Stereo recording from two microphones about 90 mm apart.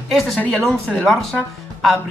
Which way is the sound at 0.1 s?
5° left (ahead or behind).